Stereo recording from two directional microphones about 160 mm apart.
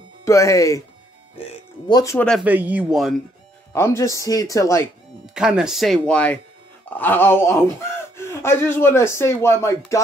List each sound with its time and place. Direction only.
0.2 s speech: 20° left (ahead or behind)
2.1 s speech: 5° left (ahead or behind)
2.4 s speech: 10° right (ahead or behind)
3.7 s speech: 15° left (ahead or behind)
5.3 s speech: 5° right (ahead or behind); by 9.8 s 15° left (ahead or behind)